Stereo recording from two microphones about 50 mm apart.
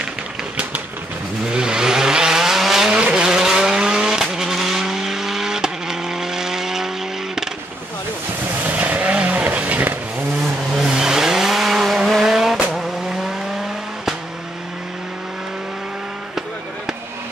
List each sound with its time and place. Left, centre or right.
1.5 s vehicle: centre
2.9 s vehicle: right
8.6 s vehicle: right
10.8 s vehicle: centre